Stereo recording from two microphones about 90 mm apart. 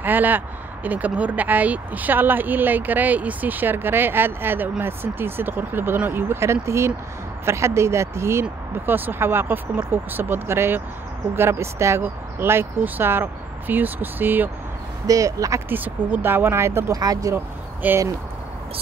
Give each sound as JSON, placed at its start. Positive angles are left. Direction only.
{"t": 0.0, "sound": "a sound", "side_deg": -20}
{"t": 0.8, "sound": "speech", "side_deg": -15}
{"t": 15.0, "sound": "speech", "side_deg": -40}
{"t": 15.7, "sound": "speech", "side_deg": -20}
{"t": 17.0, "sound": "speech", "side_deg": -40}
{"t": 17.8, "sound": "speech", "side_deg": -20}